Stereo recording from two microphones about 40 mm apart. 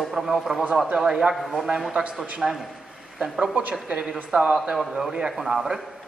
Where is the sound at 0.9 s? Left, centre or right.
Right.